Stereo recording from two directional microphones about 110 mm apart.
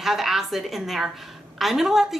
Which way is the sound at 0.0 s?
5° right (ahead or behind).